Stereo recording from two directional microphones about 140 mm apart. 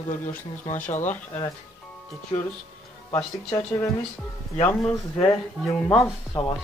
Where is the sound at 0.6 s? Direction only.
65° left (ahead or behind).